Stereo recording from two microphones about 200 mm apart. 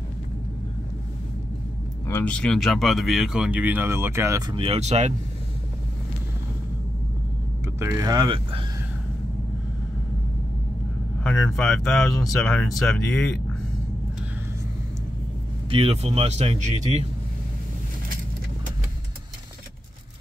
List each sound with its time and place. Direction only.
2.0 s speech: 10° left (ahead or behind); by 5.1 s 35° right (ahead or behind)
7.6 s speech: 15° right (ahead or behind)
11.2 s speech: 5° left (ahead or behind)
15.7 s speech: 30° right (ahead or behind)